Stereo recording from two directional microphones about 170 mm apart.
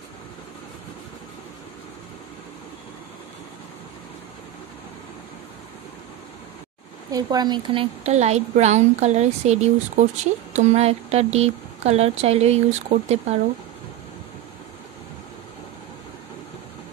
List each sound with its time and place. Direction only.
7.1 s a woman's voice: 20° right (ahead or behind); by 13.4 s 40° right (ahead or behind)